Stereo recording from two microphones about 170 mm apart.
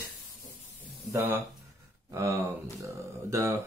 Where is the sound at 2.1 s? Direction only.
15° right (ahead or behind).